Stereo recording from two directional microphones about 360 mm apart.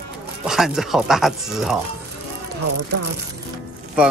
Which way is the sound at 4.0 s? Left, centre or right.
Centre.